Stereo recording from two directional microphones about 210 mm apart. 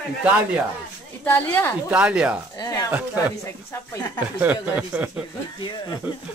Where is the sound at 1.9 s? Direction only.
5° right (ahead or behind).